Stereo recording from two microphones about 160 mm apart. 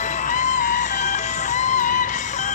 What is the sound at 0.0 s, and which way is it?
Music, 50° left (ahead or behind).